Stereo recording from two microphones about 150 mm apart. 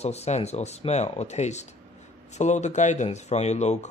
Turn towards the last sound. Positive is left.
turn(degrees=50)  # may be behind; listen again after turning